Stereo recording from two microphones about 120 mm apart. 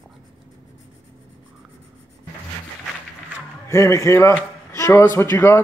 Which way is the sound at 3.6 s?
25° left (ahead or behind).